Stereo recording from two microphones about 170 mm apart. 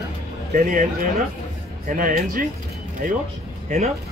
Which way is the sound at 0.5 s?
55° right (ahead or behind).